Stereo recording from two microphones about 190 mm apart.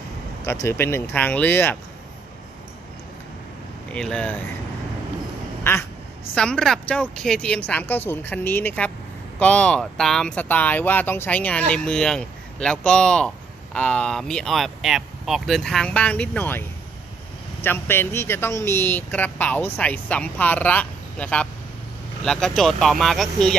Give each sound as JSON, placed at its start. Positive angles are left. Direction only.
{"t": 0.5, "sound": "speech", "side_deg": 15}
{"t": 3.9, "sound": "speech", "side_deg": 5}
{"t": 5.6, "sound": "quack", "side_deg": 10}
{"t": 6.3, "sound": "speech", "side_deg": 5}